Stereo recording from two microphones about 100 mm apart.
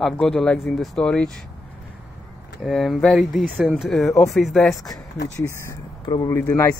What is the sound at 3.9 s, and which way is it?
Speech, 5° left (ahead or behind).